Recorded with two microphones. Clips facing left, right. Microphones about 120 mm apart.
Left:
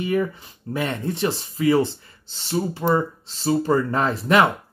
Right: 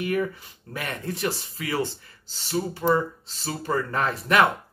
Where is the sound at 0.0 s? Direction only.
30° left (ahead or behind).